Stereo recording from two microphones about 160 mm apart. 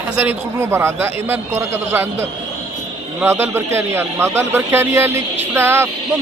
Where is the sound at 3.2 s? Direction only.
15° right (ahead or behind).